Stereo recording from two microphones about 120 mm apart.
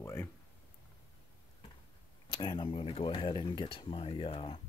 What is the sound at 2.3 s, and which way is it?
Speech, 40° left (ahead or behind).